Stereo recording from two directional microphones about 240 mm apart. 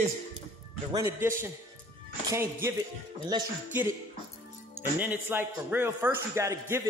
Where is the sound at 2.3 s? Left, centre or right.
Centre.